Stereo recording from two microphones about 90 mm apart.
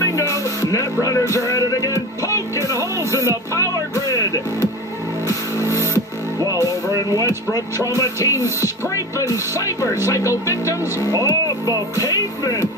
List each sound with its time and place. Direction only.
0.0 s music: 35° left (ahead or behind)
5.6 s music: 35° left (ahead or behind)
7.2 s speech: 40° left (ahead or behind)